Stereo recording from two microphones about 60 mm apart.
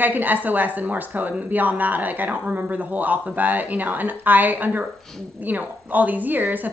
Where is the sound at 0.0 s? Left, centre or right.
Right.